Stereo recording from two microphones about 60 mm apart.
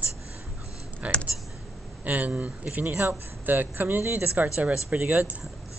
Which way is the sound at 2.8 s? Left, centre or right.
Right.